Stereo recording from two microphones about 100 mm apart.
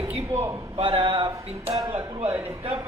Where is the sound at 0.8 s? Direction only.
70° right (ahead or behind).